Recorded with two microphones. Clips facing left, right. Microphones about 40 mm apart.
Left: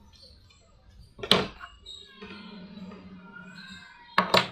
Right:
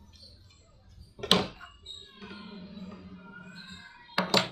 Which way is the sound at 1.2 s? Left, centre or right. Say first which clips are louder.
Left 2 dB; left.